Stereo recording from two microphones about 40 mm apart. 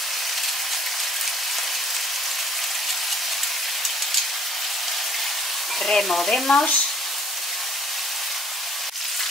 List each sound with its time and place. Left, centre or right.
5.9 s frying: centre
6.5 s frying: left